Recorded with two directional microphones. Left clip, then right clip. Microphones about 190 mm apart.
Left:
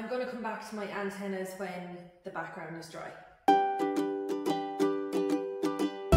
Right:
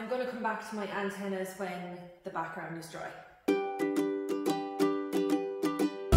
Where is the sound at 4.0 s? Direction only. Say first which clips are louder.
Even; 15° left (ahead or behind).